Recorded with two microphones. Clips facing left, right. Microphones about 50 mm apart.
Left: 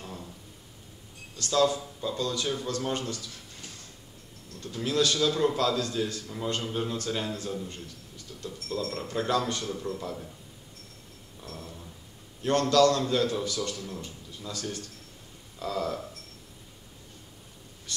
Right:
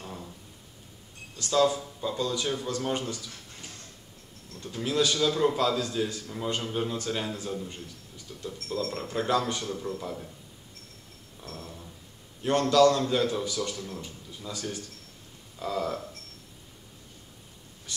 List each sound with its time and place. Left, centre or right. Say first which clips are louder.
0.0 s a sound: right 1 dB; centre
1.4 s a man's voice: right 1 dB; centre
4.7 s a man's voice: even; centre
6.2 s a man's voice: even; centre
11.4 s dog: even; centre
12.4 s a man's voice: right 1 dB; centre
13.9 s a sound: even; centre
14.5 s a man's voice: even; centre
17.9 s a sound: left 1 dB; centre